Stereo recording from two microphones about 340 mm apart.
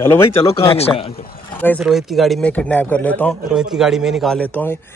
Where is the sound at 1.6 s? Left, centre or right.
Centre.